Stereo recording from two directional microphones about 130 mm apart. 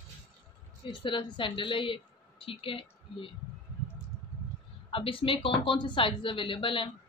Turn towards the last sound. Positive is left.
turn(degrees=40)  # may be behind; listen again after turning